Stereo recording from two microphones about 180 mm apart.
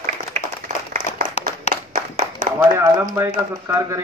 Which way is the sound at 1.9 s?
50° right (ahead or behind).